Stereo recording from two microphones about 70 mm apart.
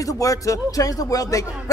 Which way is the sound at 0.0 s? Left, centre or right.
Left.